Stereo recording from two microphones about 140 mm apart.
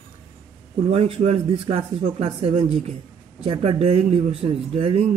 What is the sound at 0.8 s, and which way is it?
Speech, 45° right (ahead or behind).